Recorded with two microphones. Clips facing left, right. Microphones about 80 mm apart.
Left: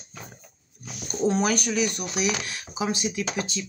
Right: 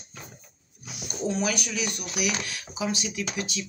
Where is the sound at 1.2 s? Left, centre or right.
Left.